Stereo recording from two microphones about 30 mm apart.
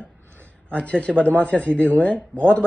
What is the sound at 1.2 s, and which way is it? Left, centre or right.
Speech, left.